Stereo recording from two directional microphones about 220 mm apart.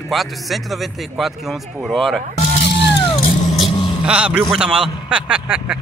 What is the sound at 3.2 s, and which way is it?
Music, 40° left (ahead or behind).